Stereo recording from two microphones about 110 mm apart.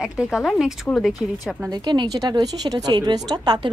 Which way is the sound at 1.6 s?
40° right (ahead or behind).